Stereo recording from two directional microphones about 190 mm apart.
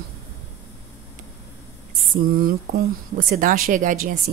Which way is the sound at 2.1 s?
50° right (ahead or behind).